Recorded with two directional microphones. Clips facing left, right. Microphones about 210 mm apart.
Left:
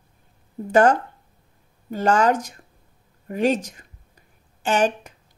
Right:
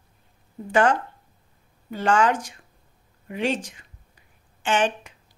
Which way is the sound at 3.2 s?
40° left (ahead or behind).